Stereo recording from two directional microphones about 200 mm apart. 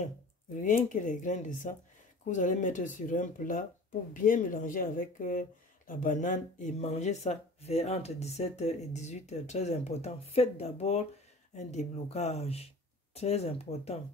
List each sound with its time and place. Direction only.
0.6 s speech: 40° left (ahead or behind)